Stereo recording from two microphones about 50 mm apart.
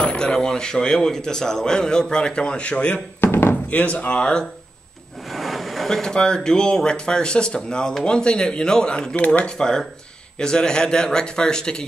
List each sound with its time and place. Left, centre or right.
0.0 s a man's voice: centre
3.2 s knock: left
3.7 s speech: left
5.3 s a sound: centre
5.9 s a man's voice: centre
9.6 s a man's voice: centre